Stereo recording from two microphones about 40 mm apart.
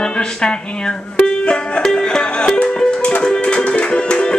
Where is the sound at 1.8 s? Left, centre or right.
Centre.